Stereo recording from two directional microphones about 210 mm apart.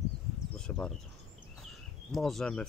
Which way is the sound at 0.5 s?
5° left (ahead or behind).